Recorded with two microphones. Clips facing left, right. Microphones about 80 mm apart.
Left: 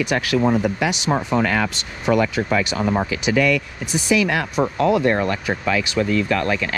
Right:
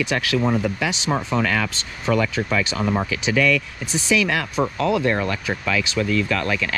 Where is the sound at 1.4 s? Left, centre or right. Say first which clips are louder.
Left 2 dB; left.